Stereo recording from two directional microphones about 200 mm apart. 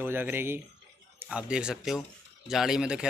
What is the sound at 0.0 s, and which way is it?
Speech, 10° right (ahead or behind).